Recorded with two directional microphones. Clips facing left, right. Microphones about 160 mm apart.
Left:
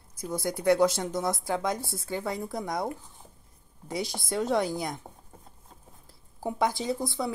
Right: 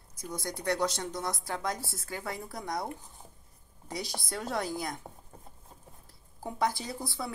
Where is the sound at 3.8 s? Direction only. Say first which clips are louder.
Left 5 dB; centre (ahead or behind).